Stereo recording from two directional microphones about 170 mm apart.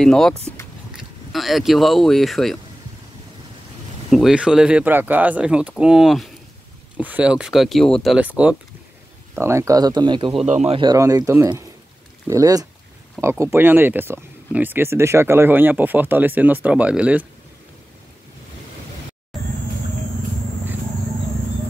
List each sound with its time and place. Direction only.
0.0 s speech: 5° left (ahead or behind)
4.1 s speech: 5° right (ahead or behind); by 10.4 s 30° right (ahead or behind)
10.4 s speech: 40° right (ahead or behind)
10.8 s speech: 20° right (ahead or behind)